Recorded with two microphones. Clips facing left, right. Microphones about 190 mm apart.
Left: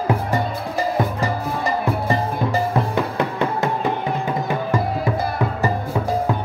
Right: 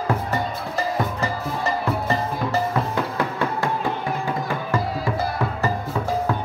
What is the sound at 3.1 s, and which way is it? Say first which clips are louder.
Music: left 3 dB; 20° left (ahead or behind).